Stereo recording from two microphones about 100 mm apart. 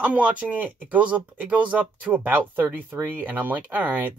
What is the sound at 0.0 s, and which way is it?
Speech, 15° right (ahead or behind).